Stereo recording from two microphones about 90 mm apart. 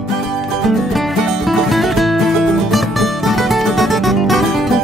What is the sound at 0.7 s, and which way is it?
Music, centre (ahead or behind).